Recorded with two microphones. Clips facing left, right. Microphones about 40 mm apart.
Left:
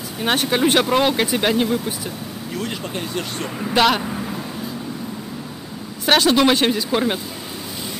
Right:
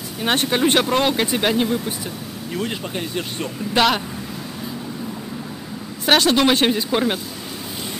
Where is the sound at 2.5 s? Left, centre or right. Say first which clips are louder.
Right 1 dB; centre.